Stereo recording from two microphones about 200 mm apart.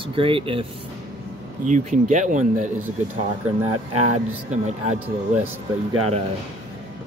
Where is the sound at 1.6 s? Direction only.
40° right (ahead or behind).